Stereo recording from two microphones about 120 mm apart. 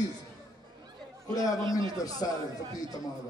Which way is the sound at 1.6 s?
45° right (ahead or behind).